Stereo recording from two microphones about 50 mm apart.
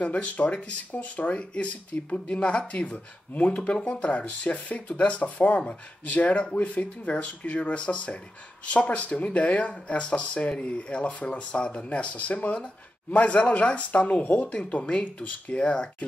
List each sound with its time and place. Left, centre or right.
0.0 s speech: left